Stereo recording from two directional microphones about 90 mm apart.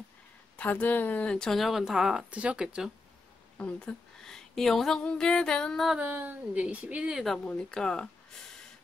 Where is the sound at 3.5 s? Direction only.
10° left (ahead or behind).